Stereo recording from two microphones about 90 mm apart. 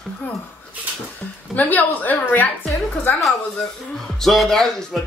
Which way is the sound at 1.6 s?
20° left (ahead or behind).